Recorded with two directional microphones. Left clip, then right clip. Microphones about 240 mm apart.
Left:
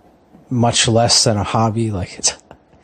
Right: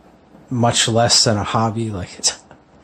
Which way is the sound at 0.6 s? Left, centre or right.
Left.